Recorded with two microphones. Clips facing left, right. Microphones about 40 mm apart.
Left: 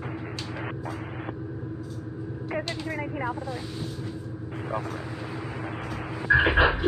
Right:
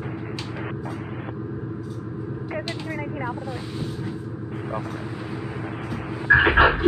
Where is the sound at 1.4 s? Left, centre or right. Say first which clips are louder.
Right 4 dB; right.